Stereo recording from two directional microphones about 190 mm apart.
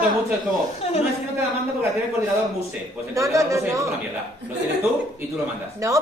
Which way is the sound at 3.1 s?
15° right (ahead or behind).